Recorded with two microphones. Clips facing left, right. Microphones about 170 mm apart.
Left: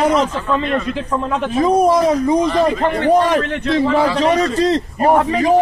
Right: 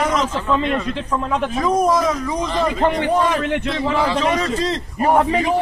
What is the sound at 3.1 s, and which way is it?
Speech, 40° left (ahead or behind).